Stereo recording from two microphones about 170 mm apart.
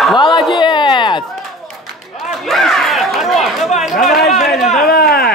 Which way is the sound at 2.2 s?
Centre (ahead or behind).